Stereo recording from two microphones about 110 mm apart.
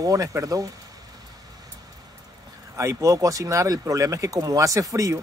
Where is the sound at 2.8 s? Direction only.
25° right (ahead or behind).